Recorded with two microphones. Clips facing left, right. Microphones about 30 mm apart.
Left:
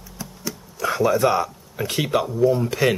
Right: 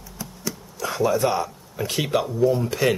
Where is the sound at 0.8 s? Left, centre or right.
Centre.